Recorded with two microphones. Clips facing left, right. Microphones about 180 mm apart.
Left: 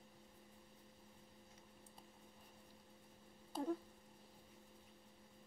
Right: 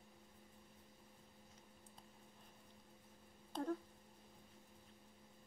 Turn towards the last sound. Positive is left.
turn(degrees=10)  # may be behind; listen again after turning